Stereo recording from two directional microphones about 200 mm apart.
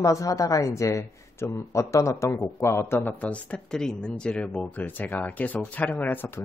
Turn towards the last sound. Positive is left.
turn(degrees=10)  # may be behind; listen again after turning